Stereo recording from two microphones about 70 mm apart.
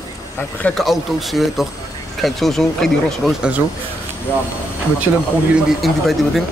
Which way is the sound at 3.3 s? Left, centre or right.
Centre.